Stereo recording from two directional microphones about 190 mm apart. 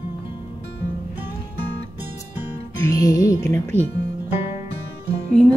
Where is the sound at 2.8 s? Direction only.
20° left (ahead or behind).